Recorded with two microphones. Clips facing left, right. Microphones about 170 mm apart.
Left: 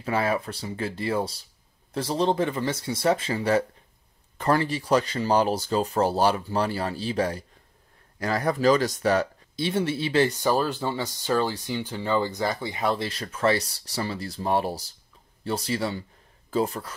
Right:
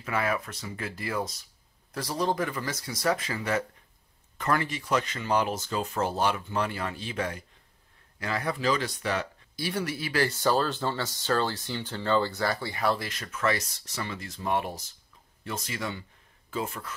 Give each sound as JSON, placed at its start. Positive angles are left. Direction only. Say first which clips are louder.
{"t": 0.0, "sound": "speech", "louder": "left 4 dB", "side_deg": 30}
{"t": 9.6, "sound": "speech", "louder": "left 6 dB", "side_deg": 25}
{"t": 13.1, "sound": "speech", "louder": "left 5 dB", "side_deg": 35}